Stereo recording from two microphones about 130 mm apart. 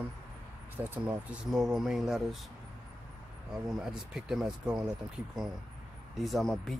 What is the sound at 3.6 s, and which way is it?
Speech, 5° right (ahead or behind).